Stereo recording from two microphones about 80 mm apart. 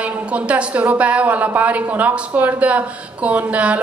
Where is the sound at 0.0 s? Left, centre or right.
Centre.